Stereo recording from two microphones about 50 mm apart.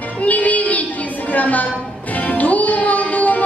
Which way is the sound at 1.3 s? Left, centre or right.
Left.